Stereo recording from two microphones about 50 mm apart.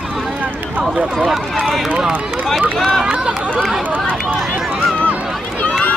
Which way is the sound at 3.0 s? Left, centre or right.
Centre.